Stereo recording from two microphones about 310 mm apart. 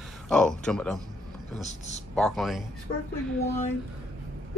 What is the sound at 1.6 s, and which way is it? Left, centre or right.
Speech, left.